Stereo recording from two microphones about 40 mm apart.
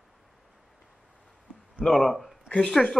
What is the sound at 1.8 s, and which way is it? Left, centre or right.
A man's voice, centre.